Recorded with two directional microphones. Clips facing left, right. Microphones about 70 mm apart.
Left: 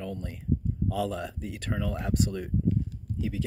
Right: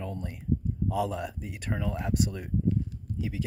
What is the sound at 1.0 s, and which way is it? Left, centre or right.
Speech, centre.